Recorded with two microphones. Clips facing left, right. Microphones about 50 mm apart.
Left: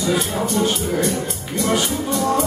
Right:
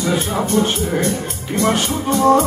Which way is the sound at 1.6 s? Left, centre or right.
Right.